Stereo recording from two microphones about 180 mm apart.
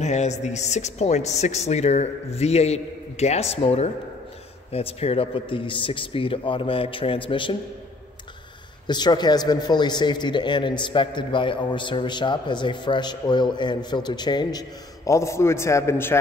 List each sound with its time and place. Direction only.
0.0 s a man's voice: 40° left (ahead or behind)
8.8 s a man's voice: 25° left (ahead or behind)